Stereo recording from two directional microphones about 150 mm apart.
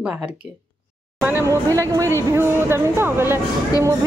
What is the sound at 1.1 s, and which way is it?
Speech, 15° right (ahead or behind).